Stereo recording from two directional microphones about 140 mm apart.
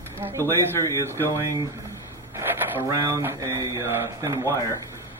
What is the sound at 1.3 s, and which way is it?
Speech, 25° right (ahead or behind).